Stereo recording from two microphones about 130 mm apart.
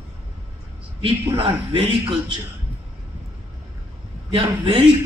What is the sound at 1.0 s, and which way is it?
A man's voice, 40° right (ahead or behind).